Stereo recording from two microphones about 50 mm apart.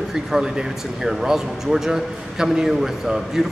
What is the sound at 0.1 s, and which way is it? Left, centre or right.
Speech, centre.